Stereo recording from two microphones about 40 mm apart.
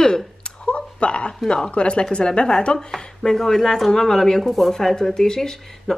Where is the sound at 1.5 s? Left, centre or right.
Left.